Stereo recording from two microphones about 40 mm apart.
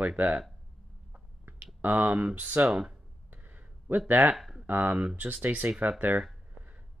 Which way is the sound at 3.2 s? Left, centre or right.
Right.